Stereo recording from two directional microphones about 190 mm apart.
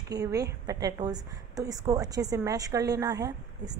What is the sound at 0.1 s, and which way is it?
A woman's voice, 20° right (ahead or behind).